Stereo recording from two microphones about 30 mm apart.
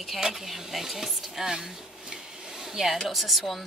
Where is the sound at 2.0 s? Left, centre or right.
Right.